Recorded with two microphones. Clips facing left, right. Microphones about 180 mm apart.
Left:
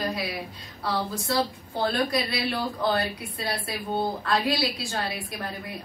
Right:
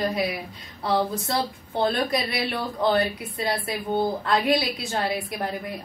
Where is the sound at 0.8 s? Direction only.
25° right (ahead or behind).